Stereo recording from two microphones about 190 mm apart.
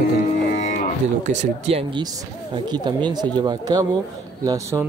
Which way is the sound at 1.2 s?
40° right (ahead or behind).